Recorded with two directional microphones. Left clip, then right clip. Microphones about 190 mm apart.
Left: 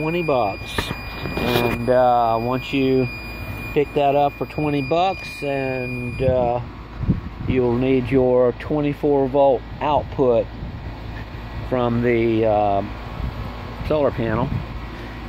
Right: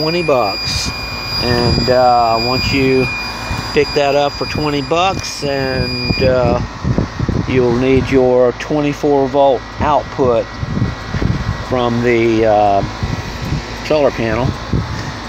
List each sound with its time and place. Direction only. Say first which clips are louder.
0.0 s speech: right 6 dB; 5° left (ahead or behind)
1.9 s speech: right 5 dB; 5° left (ahead or behind)
5.7 s speech: right 8 dB; centre (ahead or behind)
9.3 s speech: right 5 dB; 20° left (ahead or behind)
11.7 s speech: right 5 dB; 5° left (ahead or behind)
13.8 s speech: right 6 dB; 5° left (ahead or behind)